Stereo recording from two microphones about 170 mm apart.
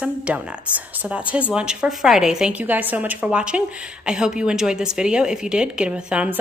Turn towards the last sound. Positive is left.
turn(degrees=-5)  # may be behind; listen again after turning